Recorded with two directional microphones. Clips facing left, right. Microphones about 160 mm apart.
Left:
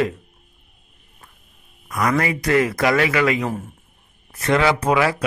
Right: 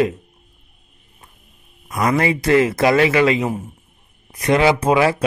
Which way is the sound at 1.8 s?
25° right (ahead or behind).